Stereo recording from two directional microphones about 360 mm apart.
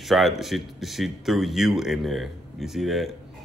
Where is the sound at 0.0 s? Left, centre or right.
Centre.